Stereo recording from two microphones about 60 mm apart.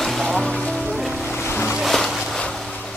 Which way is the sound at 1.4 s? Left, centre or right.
Left.